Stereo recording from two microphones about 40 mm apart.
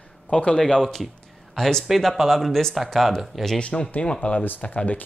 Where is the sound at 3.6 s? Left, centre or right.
Left.